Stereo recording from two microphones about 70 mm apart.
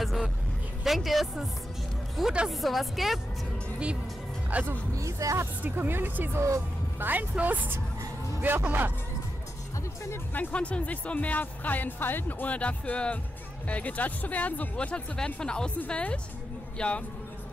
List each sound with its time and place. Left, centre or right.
0.0 s vehicle: centre
0.8 s a woman's voice: centre
4.5 s speech: right
4.9 s speech: right
5.6 s speech: right
10.5 s a man's voice: centre